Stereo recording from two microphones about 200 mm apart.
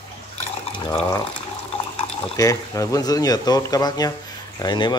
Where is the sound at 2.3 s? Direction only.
15° left (ahead or behind).